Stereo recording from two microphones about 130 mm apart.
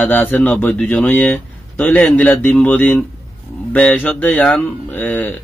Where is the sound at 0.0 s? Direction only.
10° left (ahead or behind).